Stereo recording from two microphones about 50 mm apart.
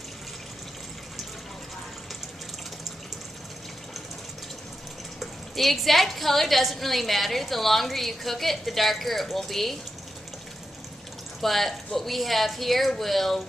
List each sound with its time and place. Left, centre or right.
5.2 s a woman's voice: centre
11.4 s a woman's voice: centre